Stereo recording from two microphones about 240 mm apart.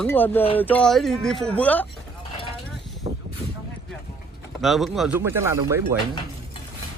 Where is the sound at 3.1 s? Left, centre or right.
Right.